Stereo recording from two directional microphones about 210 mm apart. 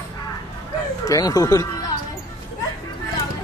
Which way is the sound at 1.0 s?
15° left (ahead or behind).